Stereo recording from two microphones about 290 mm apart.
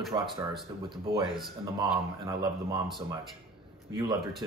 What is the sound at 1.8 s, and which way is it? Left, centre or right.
Speech, centre.